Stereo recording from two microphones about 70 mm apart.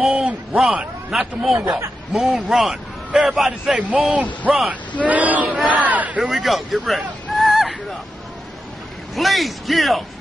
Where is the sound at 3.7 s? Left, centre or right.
Centre.